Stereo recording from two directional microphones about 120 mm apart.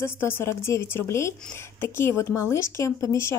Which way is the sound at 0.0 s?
20° left (ahead or behind).